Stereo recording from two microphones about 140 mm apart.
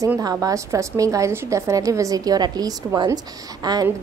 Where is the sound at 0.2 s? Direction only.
25° right (ahead or behind).